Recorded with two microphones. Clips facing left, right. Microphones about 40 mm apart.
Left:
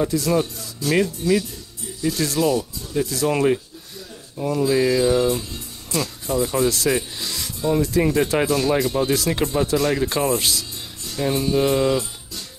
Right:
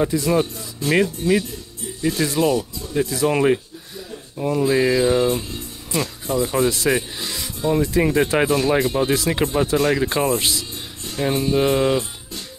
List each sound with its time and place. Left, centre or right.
0.0 s music: centre
2.0 s speech: right
2.4 s music: right
3.1 s speech: centre
4.6 s music: right
5.9 s music: centre
7.2 s speech: centre
9.0 s speech: centre
11.1 s music: right